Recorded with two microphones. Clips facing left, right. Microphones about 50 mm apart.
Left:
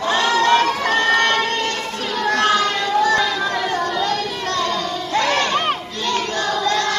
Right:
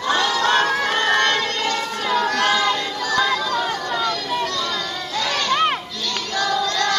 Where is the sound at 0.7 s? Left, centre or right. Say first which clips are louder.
Left 2 dB; right.